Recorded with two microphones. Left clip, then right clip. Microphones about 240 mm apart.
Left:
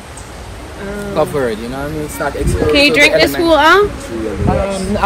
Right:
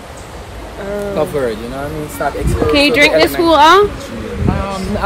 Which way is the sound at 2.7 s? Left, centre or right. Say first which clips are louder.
Left 1 dB; right.